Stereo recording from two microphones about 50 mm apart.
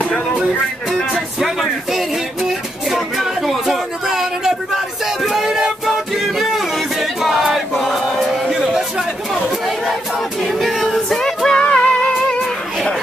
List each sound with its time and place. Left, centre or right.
0.0 s music: left
1.4 s music: centre
4.7 s a sound: centre
8.7 s chatter: centre
10.4 s music: centre
11.7 s music: left